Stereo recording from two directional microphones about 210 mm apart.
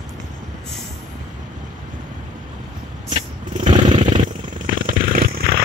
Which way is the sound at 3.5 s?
35° right (ahead or behind).